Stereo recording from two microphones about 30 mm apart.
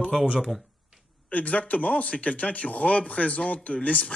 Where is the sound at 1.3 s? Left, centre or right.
Left.